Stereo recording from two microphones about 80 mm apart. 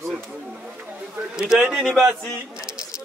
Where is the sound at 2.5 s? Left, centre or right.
Centre.